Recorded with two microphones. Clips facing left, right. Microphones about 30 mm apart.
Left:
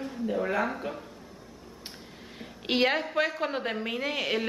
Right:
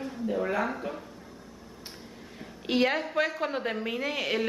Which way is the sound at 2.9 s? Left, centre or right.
Centre.